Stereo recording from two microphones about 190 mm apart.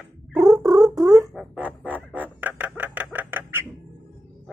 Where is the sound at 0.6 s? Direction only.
20° right (ahead or behind).